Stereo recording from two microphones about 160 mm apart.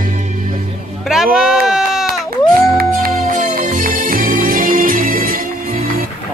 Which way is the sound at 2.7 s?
60° right (ahead or behind).